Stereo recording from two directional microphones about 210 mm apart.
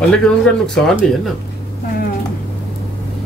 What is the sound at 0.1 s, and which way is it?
Speech, 5° left (ahead or behind).